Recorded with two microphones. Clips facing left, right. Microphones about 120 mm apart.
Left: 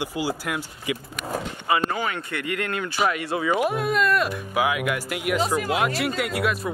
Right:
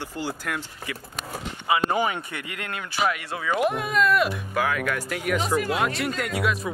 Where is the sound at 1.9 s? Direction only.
20° right (ahead or behind).